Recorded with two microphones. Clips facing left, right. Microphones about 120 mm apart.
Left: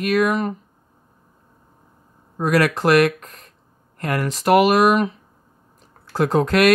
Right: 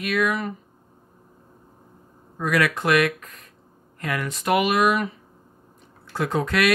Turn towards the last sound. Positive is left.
turn(degrees=45)  # may be behind; listen again after turning